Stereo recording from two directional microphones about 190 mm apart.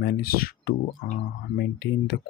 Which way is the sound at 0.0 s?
55° left (ahead or behind).